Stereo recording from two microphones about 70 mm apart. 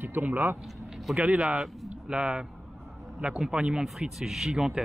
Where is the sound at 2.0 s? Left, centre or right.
Centre.